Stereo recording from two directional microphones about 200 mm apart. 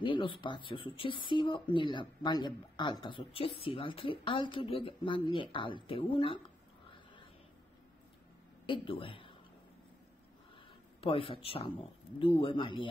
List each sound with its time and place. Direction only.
0.0 s speech: 25° left (ahead or behind)
8.6 s speech: 25° left (ahead or behind)
11.0 s speech: 25° left (ahead or behind)